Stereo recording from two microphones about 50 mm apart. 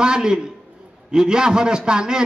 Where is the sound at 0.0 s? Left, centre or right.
Centre.